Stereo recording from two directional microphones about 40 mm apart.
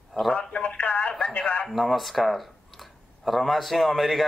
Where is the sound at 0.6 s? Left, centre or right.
Left.